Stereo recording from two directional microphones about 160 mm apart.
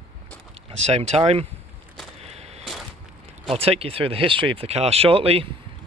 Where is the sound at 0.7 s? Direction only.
40° right (ahead or behind).